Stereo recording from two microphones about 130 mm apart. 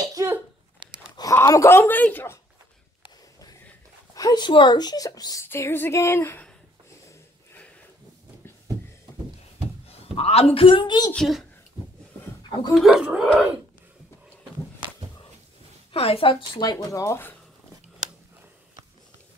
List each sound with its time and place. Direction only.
0.0 s a sound: 25° right (ahead or behind)
1.3 s speech: 20° left (ahead or behind)
4.1 s speech: 30° left (ahead or behind)
7.1 s a sound: 15° left (ahead or behind)
9.8 s a woman's voice: 50° left (ahead or behind)
12.7 s speech: centre (ahead or behind)
15.9 s speech: 45° left (ahead or behind)
16.7 s speech: 20° left (ahead or behind)